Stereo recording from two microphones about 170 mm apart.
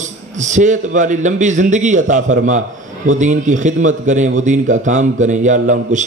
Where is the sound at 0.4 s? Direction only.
45° right (ahead or behind).